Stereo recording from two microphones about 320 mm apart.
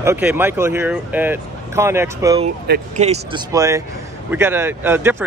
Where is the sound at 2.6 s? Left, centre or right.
Right.